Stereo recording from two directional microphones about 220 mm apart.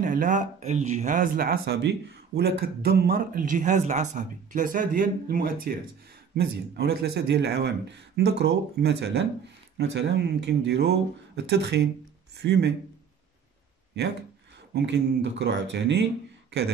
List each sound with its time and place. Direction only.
0.0 s speech: 35° right (ahead or behind)
14.7 s speech: 50° right (ahead or behind)